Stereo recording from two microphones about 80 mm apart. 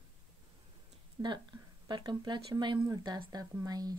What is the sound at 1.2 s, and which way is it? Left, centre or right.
Speech, right.